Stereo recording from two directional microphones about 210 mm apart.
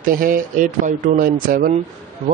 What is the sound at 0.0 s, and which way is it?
Speech, 40° right (ahead or behind).